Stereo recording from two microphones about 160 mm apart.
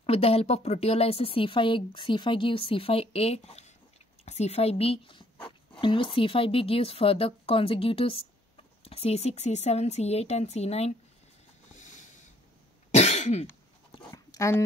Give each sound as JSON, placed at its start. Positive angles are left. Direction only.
{"t": 0.0, "sound": "speech", "side_deg": 40}
{"t": 11.7, "sound": "a sound", "side_deg": 50}
{"t": 12.9, "sound": "cough", "side_deg": 45}
{"t": 14.1, "sound": "dog", "side_deg": 20}